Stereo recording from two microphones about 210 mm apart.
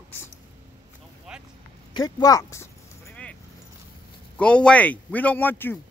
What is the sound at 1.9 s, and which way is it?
Speech, 15° left (ahead or behind).